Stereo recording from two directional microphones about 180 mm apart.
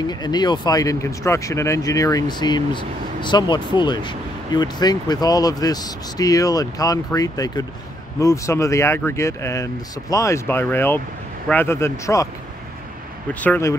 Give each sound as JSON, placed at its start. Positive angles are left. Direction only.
{"t": 0.0, "sound": "speech", "side_deg": 20}
{"t": 13.3, "sound": "speech", "side_deg": 10}